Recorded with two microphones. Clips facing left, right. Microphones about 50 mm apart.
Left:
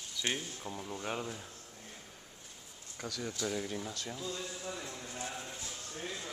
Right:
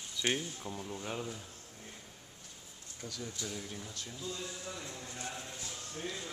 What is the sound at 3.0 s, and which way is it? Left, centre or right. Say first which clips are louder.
Speech: left 5 dB; left.